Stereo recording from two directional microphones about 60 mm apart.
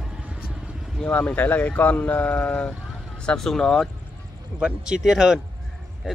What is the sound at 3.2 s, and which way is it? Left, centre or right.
Speech, centre.